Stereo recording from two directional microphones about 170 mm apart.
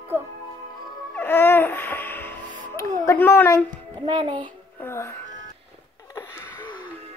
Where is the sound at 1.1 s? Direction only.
10° left (ahead or behind).